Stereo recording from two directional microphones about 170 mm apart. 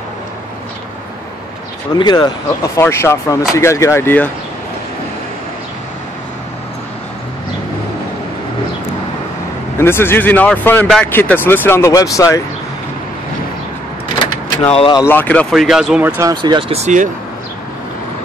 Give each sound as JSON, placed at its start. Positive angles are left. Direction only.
{"t": 2.0, "sound": "speech", "side_deg": 25}
{"t": 9.8, "sound": "speech", "side_deg": 15}
{"t": 14.6, "sound": "speech", "side_deg": 35}
{"t": 15.0, "sound": "speech", "side_deg": 10}
{"t": 15.5, "sound": "speech", "side_deg": 0}
{"t": 16.3, "sound": "speech", "side_deg": -25}